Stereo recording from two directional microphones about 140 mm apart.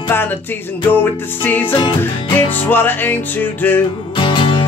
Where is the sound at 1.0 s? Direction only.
15° left (ahead or behind).